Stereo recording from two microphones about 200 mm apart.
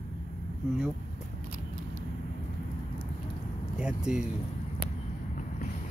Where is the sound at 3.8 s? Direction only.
5° right (ahead or behind).